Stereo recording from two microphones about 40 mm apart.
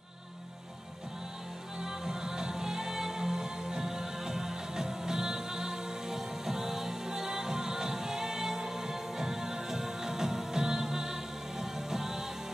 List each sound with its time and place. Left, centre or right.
1.8 s music: centre